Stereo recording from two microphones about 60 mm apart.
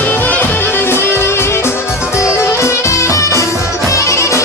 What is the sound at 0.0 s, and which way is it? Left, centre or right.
Music, left.